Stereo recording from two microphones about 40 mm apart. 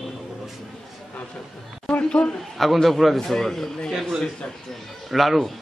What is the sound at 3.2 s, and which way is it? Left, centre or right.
Speech, centre.